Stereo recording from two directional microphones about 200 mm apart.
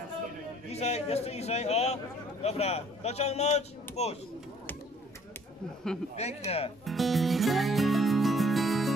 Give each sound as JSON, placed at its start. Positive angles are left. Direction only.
{"t": 0.7, "sound": "speech", "side_deg": 30}
{"t": 6.1, "sound": "speech", "side_deg": 35}
{"t": 6.8, "sound": "music", "side_deg": 0}